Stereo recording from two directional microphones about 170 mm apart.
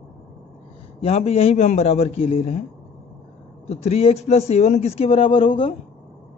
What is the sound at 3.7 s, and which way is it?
A man's voice, 35° left (ahead or behind).